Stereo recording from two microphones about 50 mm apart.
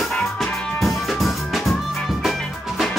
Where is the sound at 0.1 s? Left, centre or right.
Centre.